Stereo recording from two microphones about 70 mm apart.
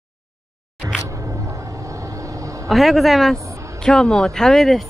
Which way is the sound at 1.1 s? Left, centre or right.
Right.